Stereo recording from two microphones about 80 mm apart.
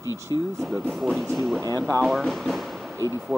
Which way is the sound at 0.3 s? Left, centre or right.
Left.